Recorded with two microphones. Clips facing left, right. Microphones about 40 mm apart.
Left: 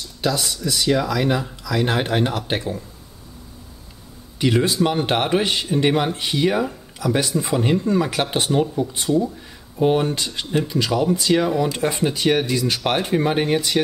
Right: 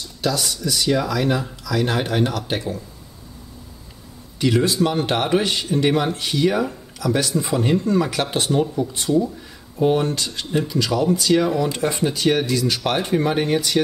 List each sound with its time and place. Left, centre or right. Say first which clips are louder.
0.2 s speech: even; centre
0.5 s speech: even; centre
4.4 s speech: even; centre
10.4 s speech: even; centre
10.7 s speech: right 1 dB; centre